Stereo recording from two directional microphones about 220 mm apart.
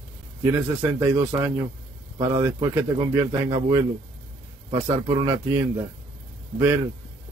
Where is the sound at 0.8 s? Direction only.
10° right (ahead or behind).